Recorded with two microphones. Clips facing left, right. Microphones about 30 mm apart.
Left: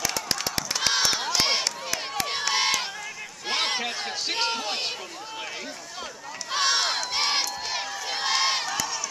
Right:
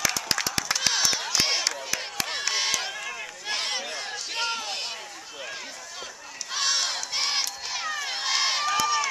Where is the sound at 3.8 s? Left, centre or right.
Left.